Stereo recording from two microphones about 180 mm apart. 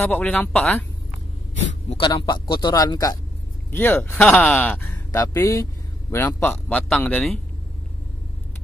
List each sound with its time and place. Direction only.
0.1 s speech: 10° left (ahead or behind)
2.0 s a man's voice: 25° left (ahead or behind); by 7.3 s 10° left (ahead or behind)